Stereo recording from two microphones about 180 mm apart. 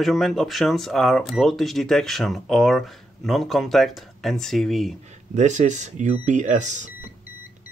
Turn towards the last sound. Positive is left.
turn(degrees=-40)  # may be behind; listen again after turning